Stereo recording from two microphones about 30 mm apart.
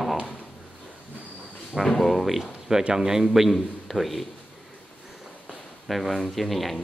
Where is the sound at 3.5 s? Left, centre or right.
Centre.